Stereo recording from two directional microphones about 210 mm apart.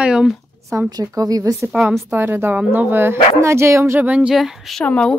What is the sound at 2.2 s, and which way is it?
A woman's voice, 10° right (ahead or behind).